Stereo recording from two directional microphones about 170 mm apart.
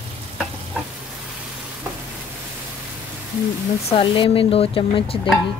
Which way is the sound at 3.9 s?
30° left (ahead or behind).